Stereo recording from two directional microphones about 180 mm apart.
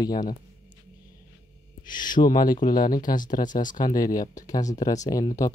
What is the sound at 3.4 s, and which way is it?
Speech, 45° left (ahead or behind).